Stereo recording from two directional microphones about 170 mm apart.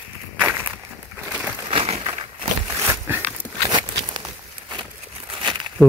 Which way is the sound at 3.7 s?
25° right (ahead or behind).